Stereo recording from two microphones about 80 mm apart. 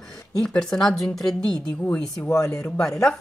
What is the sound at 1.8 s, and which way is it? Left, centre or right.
Speech, left.